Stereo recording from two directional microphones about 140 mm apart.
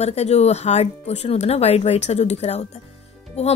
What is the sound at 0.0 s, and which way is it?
A woman's voice, 50° left (ahead or behind).